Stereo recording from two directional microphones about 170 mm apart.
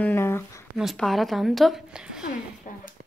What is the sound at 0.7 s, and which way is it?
Speech, centre (ahead or behind).